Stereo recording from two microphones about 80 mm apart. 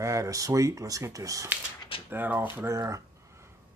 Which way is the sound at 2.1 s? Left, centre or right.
Right.